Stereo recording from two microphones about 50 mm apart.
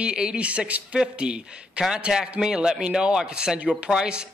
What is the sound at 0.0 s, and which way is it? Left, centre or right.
A man's voice, centre.